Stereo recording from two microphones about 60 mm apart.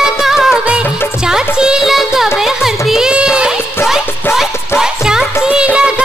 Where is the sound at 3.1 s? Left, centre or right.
Centre.